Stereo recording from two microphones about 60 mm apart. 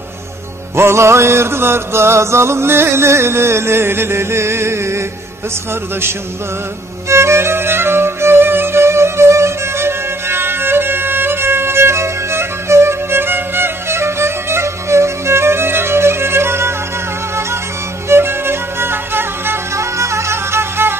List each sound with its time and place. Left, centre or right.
0.7 s music: right
7.1 s music: right
18.0 s music: right